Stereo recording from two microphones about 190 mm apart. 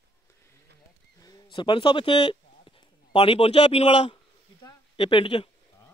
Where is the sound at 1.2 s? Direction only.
20° left (ahead or behind).